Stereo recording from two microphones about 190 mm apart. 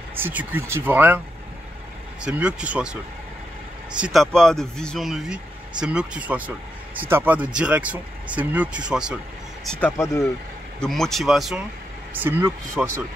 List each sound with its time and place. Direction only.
0.2 s speech: 10° right (ahead or behind)
2.2 s speech: 5° right (ahead or behind)
9.7 s speech: 10° left (ahead or behind)
10.8 s speech: centre (ahead or behind)